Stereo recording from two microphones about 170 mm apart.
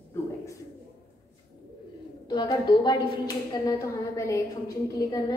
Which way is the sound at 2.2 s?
25° left (ahead or behind).